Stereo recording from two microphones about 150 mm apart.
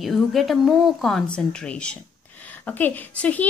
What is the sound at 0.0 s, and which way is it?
A woman's voice, centre (ahead or behind).